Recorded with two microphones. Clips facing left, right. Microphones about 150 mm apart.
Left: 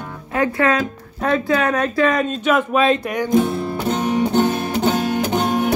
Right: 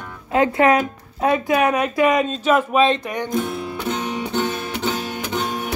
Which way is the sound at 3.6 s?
40° left (ahead or behind).